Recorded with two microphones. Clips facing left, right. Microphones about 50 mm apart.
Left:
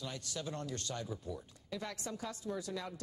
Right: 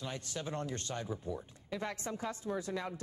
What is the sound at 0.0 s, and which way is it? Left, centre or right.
Speech, right.